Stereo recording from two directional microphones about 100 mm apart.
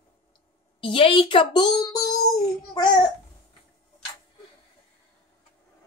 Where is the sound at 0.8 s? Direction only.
60° left (ahead or behind); by 2.9 s 45° left (ahead or behind).